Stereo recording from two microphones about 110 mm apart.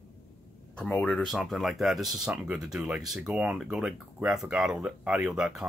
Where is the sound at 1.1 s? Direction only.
Centre (ahead or behind).